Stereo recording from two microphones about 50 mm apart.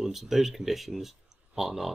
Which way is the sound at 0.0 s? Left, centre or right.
Centre.